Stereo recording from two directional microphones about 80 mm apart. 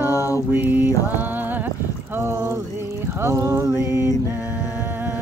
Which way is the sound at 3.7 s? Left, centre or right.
Left.